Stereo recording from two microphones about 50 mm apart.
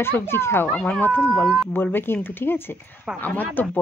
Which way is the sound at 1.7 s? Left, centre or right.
Left.